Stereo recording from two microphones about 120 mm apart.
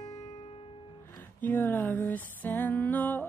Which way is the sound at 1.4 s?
15° left (ahead or behind).